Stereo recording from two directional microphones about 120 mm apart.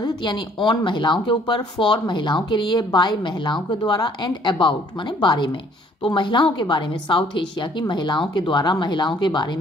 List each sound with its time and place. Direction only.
0.0 s speech: 40° left (ahead or behind)